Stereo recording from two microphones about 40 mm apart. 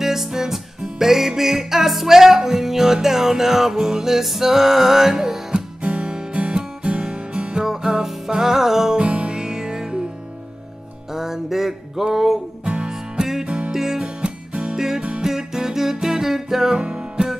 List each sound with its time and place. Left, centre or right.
0.0 s music: centre
5.8 s music: right
7.6 s music: centre
9.0 s music: right
11.1 s music: centre
12.6 s music: right; by 14.0 s centre
14.0 s music: right
14.8 s music: centre
16.7 s music: right